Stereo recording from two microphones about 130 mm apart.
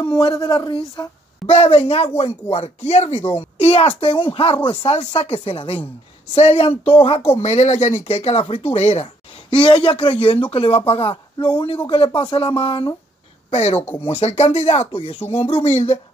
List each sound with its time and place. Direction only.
0.0 s a woman's voice: 35° left (ahead or behind); by 9.1 s 55° left (ahead or behind)
9.5 s a woman's voice: 40° left (ahead or behind)
13.5 s speech: 55° left (ahead or behind)
13.9 s speech: 45° left (ahead or behind)